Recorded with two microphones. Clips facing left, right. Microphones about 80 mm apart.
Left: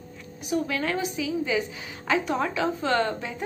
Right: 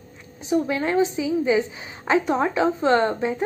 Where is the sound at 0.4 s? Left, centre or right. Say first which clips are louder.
Right 5 dB; right.